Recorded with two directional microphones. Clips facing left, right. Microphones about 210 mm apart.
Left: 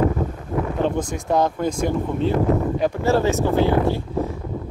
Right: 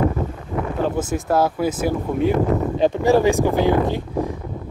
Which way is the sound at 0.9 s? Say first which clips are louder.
Right 1 dB; 5° right (ahead or behind).